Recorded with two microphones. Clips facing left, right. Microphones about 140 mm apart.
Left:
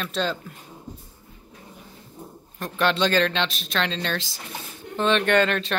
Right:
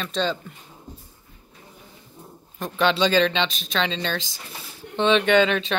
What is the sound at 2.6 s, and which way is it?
Speech, centre (ahead or behind).